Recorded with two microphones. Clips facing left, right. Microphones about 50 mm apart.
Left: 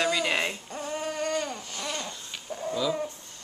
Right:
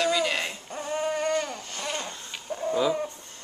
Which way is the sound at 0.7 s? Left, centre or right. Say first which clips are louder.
Right 3 dB; centre.